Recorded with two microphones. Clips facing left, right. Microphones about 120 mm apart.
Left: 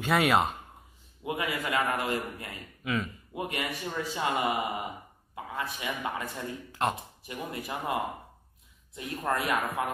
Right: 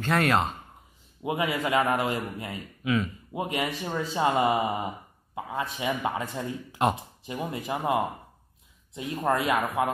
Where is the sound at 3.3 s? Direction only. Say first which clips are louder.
Right 5 dB; 25° right (ahead or behind).